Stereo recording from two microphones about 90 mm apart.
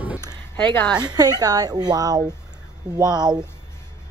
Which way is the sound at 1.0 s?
45° right (ahead or behind).